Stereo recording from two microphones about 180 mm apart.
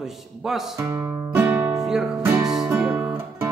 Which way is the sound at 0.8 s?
15° right (ahead or behind).